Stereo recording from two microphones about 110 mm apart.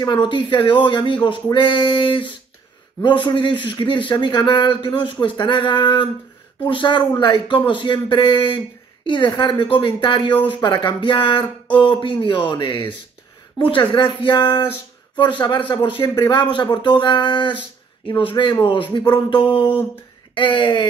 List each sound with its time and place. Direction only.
0.0 s a man's voice: 45° left (ahead or behind)